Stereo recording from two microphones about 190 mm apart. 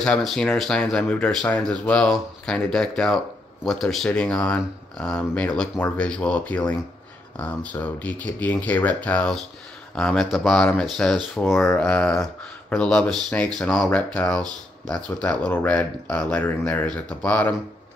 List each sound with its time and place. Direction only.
0.0 s speech: 5° left (ahead or behind)